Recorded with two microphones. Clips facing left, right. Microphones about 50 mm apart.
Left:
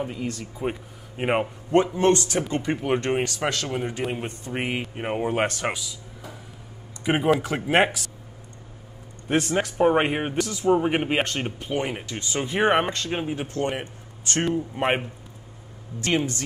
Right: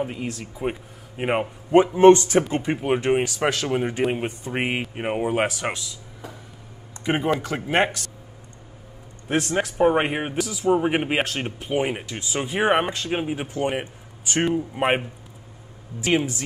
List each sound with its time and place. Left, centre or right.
0.0 s speech: right
0.3 s speech: centre
1.1 s speech: centre
2.0 s speech: right
2.4 s speech: centre
4.9 s speech: centre
7.1 s speech: centre
9.3 s speech: centre